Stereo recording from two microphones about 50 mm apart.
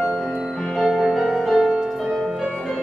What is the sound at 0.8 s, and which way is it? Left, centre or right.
Music, centre.